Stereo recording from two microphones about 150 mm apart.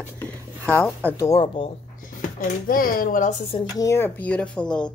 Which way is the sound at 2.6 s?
70° left (ahead or behind).